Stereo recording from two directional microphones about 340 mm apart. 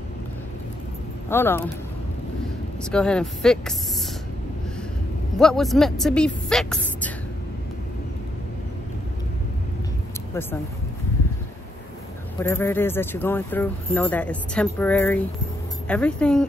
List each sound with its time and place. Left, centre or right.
1.3 s speech: centre
2.8 s speech: centre
5.4 s speech: centre
12.4 s speech: centre